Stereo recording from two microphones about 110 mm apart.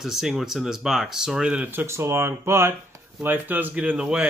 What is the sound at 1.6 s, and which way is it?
Speech, 20° right (ahead or behind).